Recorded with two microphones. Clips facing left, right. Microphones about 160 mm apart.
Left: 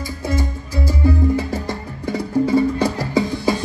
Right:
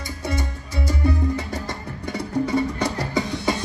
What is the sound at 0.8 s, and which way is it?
Music, 30° left (ahead or behind).